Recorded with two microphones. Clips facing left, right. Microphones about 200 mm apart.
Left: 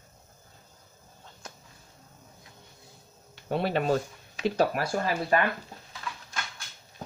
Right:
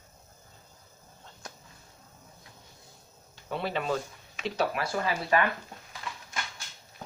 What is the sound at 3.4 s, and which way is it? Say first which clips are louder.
Speech: left 5 dB; 45° left (ahead or behind).